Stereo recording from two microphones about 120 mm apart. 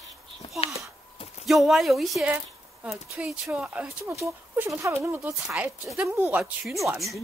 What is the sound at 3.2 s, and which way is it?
Speech, 10° right (ahead or behind).